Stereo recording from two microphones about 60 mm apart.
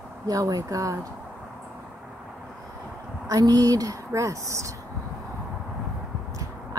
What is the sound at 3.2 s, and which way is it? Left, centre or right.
Speech, right.